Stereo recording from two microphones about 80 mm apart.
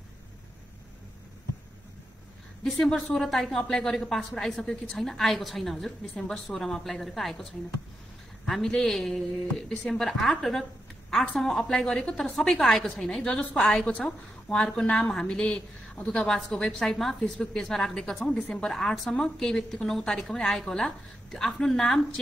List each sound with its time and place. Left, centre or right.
2.6 s a woman's voice: centre
8.5 s a woman's voice: centre